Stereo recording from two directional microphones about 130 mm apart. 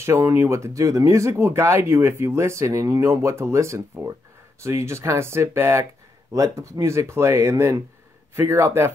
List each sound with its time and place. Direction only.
0.0 s speech: 20° right (ahead or behind)